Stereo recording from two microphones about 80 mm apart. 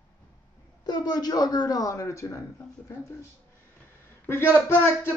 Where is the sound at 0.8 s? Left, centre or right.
Left.